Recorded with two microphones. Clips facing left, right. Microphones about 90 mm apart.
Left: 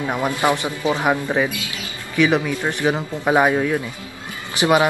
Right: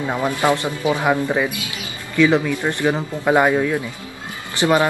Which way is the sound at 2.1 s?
15° left (ahead or behind).